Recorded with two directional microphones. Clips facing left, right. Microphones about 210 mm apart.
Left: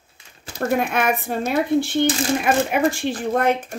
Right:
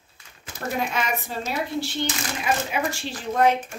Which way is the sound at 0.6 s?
55° left (ahead or behind).